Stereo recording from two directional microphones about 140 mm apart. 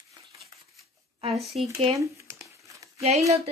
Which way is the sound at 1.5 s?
45° right (ahead or behind).